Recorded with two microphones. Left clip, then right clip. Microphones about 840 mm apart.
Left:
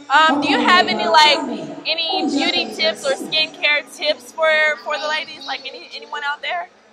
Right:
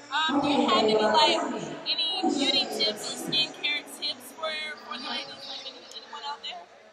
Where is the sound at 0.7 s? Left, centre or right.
Left.